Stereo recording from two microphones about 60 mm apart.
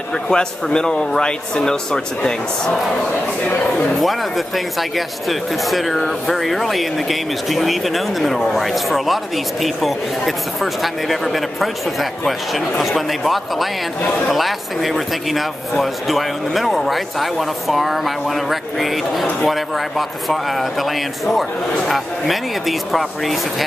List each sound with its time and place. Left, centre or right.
0.3 s a man's voice: centre
4.7 s speech: centre
21.8 s speech: centre